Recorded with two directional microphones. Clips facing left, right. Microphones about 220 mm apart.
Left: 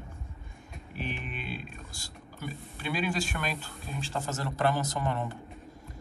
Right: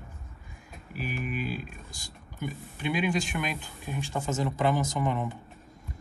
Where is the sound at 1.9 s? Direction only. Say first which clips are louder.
Left 1 dB; 15° right (ahead or behind).